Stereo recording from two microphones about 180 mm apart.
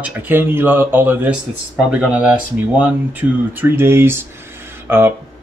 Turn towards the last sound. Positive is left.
turn(degrees=-10)  # may be behind; listen again after turning